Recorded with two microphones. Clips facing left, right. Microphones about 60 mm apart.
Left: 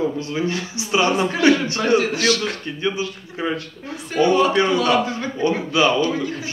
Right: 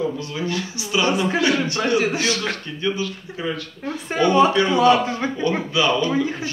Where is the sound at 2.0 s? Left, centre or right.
Right.